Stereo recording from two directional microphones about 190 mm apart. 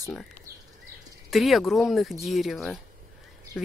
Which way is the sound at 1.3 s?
Centre (ahead or behind).